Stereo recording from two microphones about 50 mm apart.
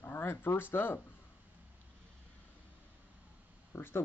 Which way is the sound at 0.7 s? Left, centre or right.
Left.